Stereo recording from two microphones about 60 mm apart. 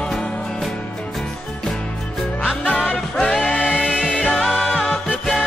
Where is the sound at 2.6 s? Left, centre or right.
Left.